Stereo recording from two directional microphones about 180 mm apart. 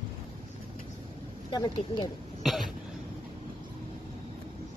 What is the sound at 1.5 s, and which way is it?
Speech, 25° left (ahead or behind).